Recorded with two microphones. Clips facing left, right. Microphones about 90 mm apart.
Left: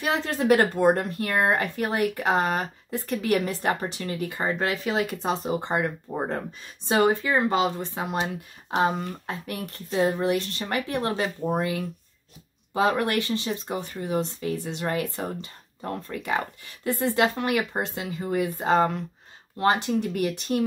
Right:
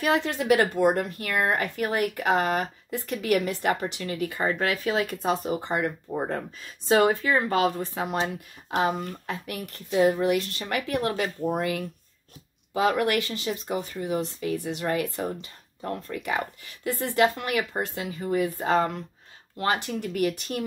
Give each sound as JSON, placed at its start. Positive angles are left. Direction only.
{"t": 0.0, "sound": "speech", "side_deg": 35}